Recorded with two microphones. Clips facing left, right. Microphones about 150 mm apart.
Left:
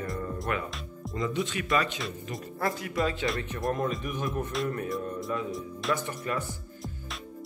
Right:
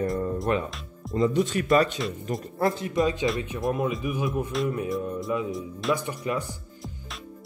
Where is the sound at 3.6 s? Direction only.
5° right (ahead or behind).